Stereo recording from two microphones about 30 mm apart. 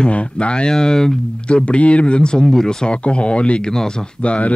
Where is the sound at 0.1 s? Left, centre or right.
Left.